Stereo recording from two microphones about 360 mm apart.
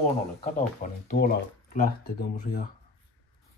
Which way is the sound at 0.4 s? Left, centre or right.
Left.